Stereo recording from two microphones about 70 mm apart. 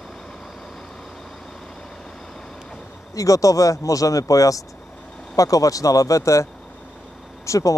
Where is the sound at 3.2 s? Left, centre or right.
Left.